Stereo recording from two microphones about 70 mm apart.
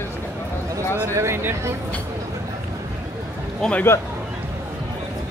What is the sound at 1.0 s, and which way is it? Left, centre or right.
Speech, right.